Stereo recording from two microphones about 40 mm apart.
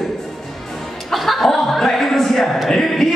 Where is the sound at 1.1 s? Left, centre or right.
Centre.